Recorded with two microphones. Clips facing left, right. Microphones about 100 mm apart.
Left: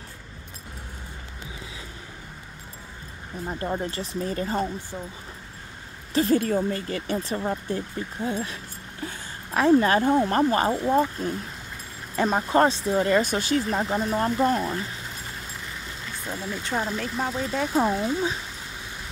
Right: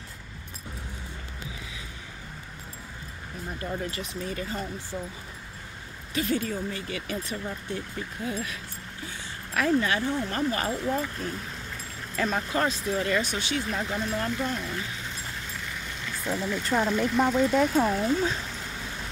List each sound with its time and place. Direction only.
3.4 s speech: 35° left (ahead or behind)
4.9 s speech: 25° left (ahead or behind)
6.1 s speech: 35° left (ahead or behind)
6.4 s speech: 50° left (ahead or behind); by 9.8 s 30° left (ahead or behind)
9.8 s speech: 40° left (ahead or behind)
10.8 s speech: 25° left (ahead or behind)
13.2 s speech: 45° left (ahead or behind)
16.3 s speech: 10° left (ahead or behind)